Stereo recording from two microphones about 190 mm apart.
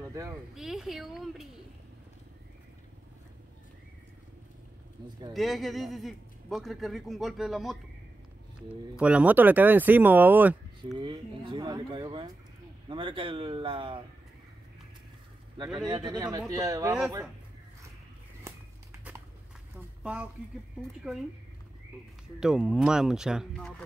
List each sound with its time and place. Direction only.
0.0 s a sound: 15° right (ahead or behind)
0.6 s a man's voice: centre (ahead or behind)
5.3 s a man's voice: centre (ahead or behind)
11.0 s speech: 25° right (ahead or behind)
15.9 s speech: 20° right (ahead or behind)
20.0 s speech: 5° right (ahead or behind)
22.4 s a man's voice: 5° right (ahead or behind)